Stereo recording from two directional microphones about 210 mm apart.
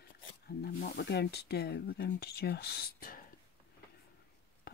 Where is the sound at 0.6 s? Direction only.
45° left (ahead or behind).